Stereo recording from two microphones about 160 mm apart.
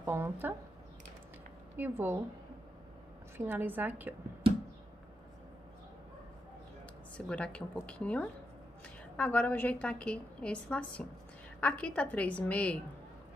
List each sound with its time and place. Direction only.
0.0 s a woman's voice: 15° right (ahead or behind)
1.8 s a woman's voice: 15° right (ahead or behind)
3.3 s a woman's voice: 15° right (ahead or behind)
7.2 s a woman's voice: 5° left (ahead or behind)